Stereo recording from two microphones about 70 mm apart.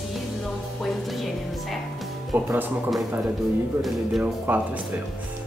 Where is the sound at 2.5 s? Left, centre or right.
Right.